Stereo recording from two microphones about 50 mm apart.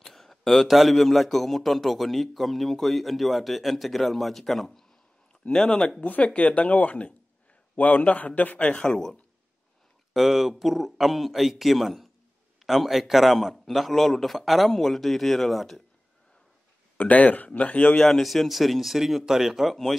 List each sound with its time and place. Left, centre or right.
0.0 s a man's voice: centre
5.5 s speech: centre
5.9 s a man's voice: left
10.1 s a man's voice: centre
16.9 s a man's voice: left
17.9 s a man's voice: centre